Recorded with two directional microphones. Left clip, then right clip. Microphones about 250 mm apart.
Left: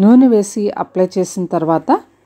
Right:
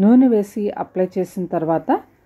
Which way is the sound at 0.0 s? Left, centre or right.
Centre.